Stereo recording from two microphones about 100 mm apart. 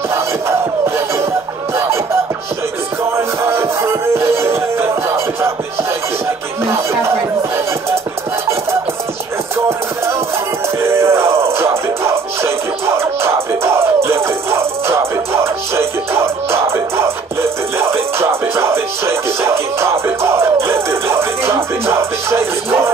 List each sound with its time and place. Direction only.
0.1 s music: 25° right (ahead or behind)
3.2 s music: 25° right (ahead or behind)
6.6 s a sound: 25° right (ahead or behind)
10.8 s music: 25° right (ahead or behind)